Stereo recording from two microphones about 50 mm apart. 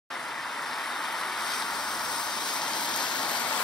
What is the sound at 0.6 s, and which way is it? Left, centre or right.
Vehicle, centre.